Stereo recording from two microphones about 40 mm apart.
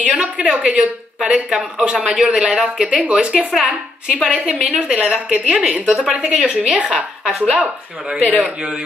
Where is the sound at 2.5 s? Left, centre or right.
Centre.